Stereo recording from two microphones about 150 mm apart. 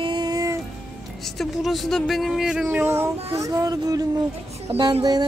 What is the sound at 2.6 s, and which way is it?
Music, 15° right (ahead or behind).